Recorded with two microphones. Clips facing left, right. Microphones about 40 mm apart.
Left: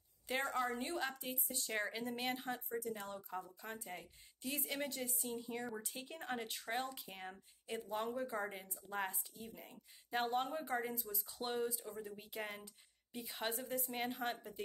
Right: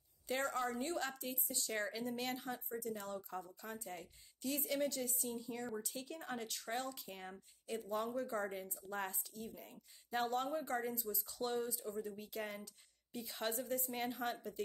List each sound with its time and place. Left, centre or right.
0.3 s speech: left
1.5 s speech: left
2.4 s speech: left
3.2 s speech: centre
3.6 s speech: left
7.6 s speech: left
8.2 s speech: left
10.9 s speech: left
11.2 s speech: left
13.4 s a woman's voice: centre
14.3 s speech: left